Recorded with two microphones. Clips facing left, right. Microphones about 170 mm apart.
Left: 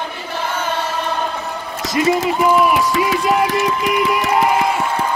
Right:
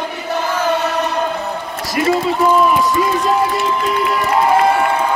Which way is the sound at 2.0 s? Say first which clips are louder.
Even; 20° left (ahead or behind).